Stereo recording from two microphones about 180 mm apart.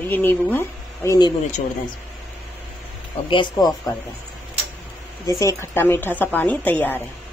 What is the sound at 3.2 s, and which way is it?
Speech, 25° left (ahead or behind).